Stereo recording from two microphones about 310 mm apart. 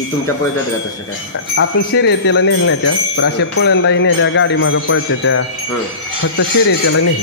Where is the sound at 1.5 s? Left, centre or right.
Left.